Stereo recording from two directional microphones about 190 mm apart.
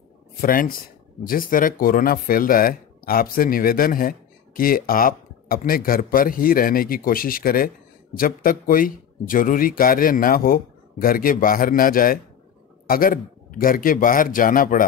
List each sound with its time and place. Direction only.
0.4 s speech: 50° left (ahead or behind)